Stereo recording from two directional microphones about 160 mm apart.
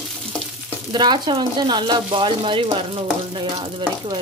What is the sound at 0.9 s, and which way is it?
A woman's voice, 30° right (ahead or behind).